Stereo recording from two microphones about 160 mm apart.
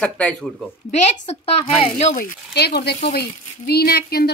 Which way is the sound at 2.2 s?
85° left.